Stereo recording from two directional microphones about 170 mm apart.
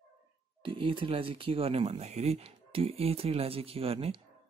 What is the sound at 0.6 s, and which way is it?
Speech, 30° right (ahead or behind).